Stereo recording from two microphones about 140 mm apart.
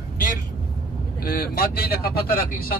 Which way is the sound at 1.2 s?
90° left.